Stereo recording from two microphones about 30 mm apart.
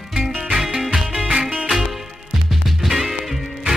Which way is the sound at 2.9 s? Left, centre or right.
Centre.